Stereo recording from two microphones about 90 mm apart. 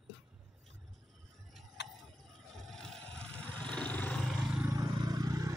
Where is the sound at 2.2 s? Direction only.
5° left (ahead or behind).